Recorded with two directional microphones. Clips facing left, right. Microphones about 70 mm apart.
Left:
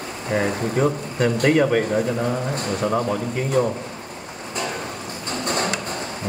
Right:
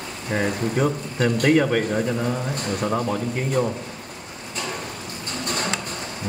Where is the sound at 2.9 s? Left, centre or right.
Centre.